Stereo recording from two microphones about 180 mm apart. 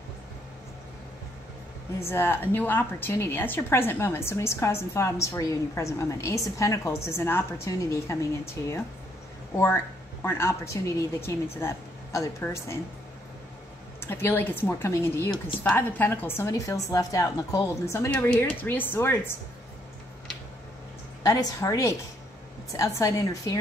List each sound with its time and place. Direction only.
2.0 s a woman's voice: 15° left (ahead or behind)
10.2 s a woman's voice: 15° left (ahead or behind)
13.9 s a woman's voice: 15° left (ahead or behind)
21.2 s a woman's voice: 20° left (ahead or behind)